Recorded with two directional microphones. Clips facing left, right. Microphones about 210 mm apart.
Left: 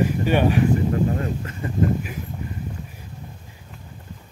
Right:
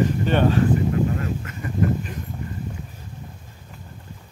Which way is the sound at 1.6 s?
30° left (ahead or behind).